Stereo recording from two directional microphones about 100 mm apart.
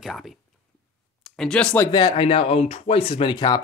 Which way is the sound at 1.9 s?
50° left (ahead or behind).